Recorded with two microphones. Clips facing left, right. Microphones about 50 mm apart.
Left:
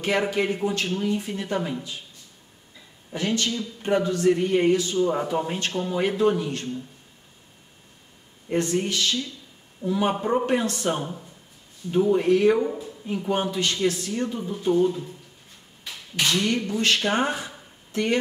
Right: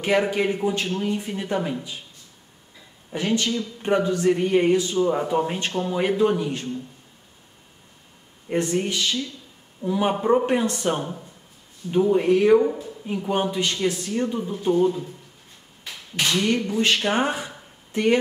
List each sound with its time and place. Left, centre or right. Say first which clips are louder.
0.0 s a man's voice: right 2 dB; centre
3.1 s speech: right 2 dB; centre
5.1 s speech: right 2 dB; centre
8.5 s speech: right 1 dB; centre
15.8 s a sound: even; centre
16.7 s speech: even; centre